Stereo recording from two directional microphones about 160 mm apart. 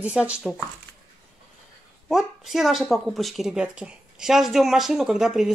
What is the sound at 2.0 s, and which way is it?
A woman's voice, centre (ahead or behind).